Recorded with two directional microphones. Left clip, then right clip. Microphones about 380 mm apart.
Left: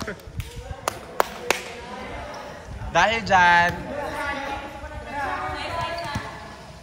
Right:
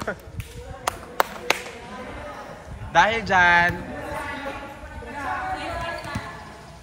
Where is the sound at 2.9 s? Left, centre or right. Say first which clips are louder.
Even; centre.